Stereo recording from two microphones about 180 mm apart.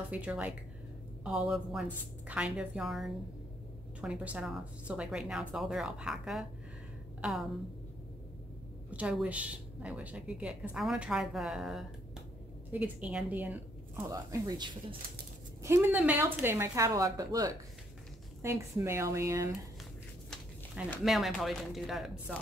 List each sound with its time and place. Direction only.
0.1 s a woman's voice: 10° right (ahead or behind)
8.9 s a woman's voice: 5° right (ahead or behind)
14.0 s a woman's voice: 20° right (ahead or behind)
21.0 s speech: centre (ahead or behind)